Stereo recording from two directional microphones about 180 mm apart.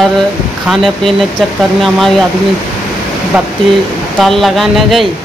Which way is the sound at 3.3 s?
5° right (ahead or behind).